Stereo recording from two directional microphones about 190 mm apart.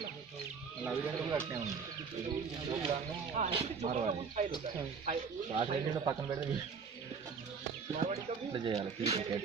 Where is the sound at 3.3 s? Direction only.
35° right (ahead or behind).